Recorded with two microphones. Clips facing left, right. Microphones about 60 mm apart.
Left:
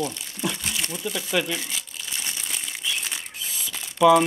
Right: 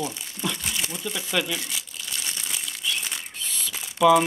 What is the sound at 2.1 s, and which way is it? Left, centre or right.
Crumpling, centre.